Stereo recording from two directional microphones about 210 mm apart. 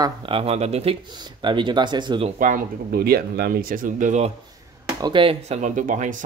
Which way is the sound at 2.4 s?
45° right (ahead or behind).